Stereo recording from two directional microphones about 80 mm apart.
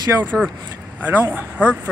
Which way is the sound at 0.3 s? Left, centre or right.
Centre.